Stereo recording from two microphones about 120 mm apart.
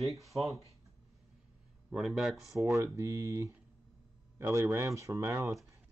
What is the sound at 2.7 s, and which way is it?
Speech, 20° right (ahead or behind).